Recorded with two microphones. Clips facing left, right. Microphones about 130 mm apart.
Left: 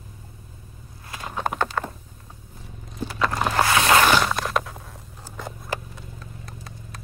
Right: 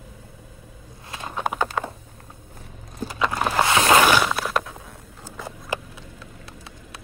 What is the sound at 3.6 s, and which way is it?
Boat, 25° right (ahead or behind).